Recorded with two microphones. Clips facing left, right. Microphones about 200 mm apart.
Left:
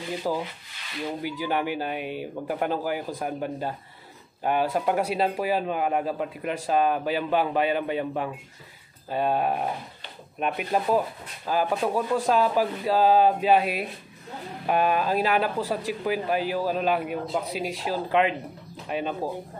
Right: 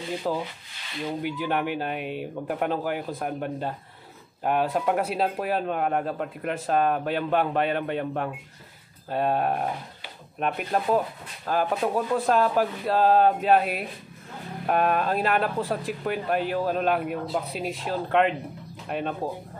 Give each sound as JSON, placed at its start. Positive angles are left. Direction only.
{"t": 0.3, "sound": "sanding", "side_deg": 5}
{"t": 1.2, "sound": "speech", "side_deg": 0}